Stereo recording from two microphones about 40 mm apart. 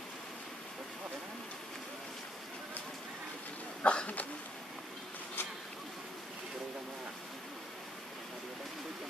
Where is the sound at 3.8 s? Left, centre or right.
Left.